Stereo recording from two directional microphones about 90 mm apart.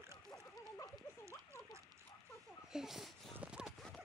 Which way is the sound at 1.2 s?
30° right (ahead or behind).